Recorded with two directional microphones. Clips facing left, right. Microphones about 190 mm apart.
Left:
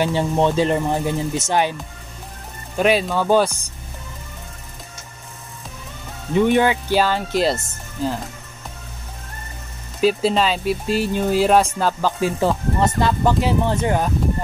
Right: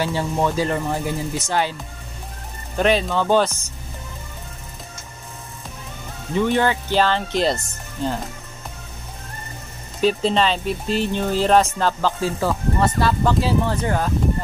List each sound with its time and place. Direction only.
0.0 s speech: 20° left (ahead or behind)
2.8 s speech: 5° left (ahead or behind)
6.3 s speech: 15° left (ahead or behind)
9.9 s speech: 5° left (ahead or behind)